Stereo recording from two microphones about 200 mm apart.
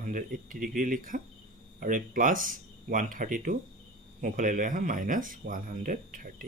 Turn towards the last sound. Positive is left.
turn(degrees=-40)  # may be behind; listen again after turning